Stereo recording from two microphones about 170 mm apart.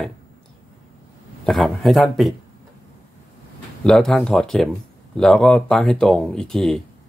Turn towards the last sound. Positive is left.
turn(degrees=5)  # may be behind; listen again after turning